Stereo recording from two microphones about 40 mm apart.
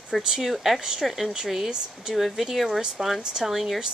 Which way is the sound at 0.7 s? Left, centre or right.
Centre.